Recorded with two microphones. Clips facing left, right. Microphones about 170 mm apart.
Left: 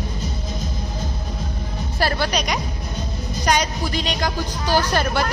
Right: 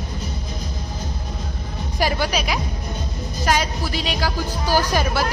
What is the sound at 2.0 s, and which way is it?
Music, 10° right (ahead or behind).